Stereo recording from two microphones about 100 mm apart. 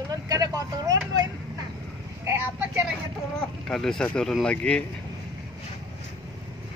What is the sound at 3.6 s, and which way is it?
Speech, 5° left (ahead or behind).